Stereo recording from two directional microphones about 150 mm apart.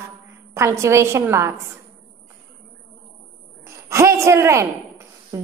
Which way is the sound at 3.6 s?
20° right (ahead or behind).